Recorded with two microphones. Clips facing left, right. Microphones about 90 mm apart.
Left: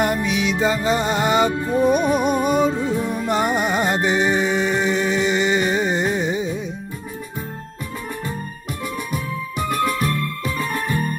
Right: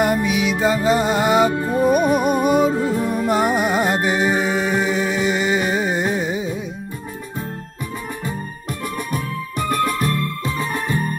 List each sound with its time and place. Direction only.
0.0 s music: 5° right (ahead or behind)
8.8 s music: 55° right (ahead or behind)
10.4 s music: 20° right (ahead or behind)